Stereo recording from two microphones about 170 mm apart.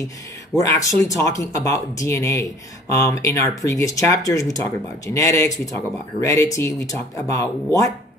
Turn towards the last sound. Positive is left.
turn(degrees=20)  # may be behind; listen again after turning